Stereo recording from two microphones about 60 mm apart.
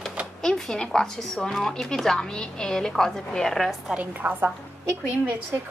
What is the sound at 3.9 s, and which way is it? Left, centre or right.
Speech, right.